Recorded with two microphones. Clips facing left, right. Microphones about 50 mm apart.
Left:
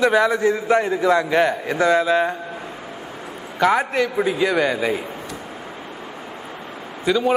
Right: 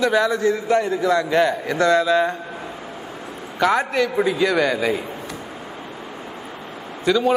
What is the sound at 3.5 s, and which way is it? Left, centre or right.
A man's voice, centre.